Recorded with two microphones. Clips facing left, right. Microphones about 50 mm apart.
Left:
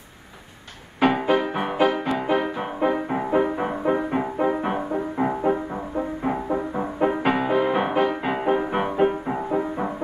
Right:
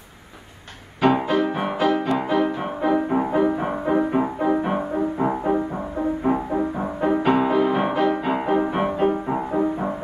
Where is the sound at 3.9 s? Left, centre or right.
Left.